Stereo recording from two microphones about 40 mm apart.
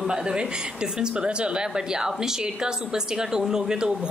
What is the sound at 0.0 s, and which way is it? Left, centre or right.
A woman's voice, centre.